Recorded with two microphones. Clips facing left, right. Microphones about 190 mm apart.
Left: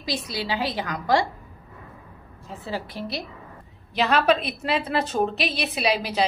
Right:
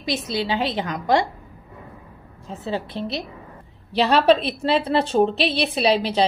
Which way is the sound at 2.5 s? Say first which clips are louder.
Right 4 dB; 25° right (ahead or behind).